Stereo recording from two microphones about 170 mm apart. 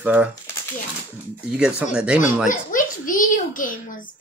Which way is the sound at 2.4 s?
50° left (ahead or behind).